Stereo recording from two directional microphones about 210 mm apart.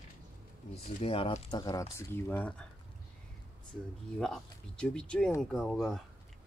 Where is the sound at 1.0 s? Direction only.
25° left (ahead or behind).